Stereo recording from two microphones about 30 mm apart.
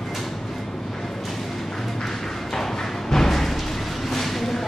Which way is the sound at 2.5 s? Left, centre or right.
Centre.